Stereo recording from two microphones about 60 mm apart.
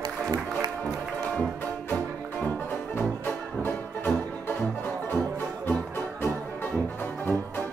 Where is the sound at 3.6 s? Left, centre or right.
Left.